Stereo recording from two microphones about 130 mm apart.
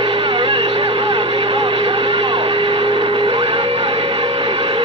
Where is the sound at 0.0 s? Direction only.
45° right (ahead or behind).